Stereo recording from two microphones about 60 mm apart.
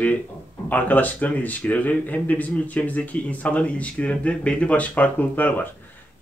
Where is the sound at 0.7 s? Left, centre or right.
Left.